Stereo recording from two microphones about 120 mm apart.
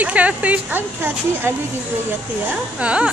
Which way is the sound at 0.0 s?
10° right (ahead or behind).